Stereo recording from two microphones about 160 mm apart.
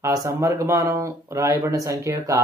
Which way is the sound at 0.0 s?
20° right (ahead or behind).